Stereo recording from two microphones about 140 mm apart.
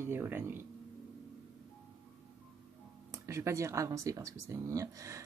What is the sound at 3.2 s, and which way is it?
Speech, 20° right (ahead or behind).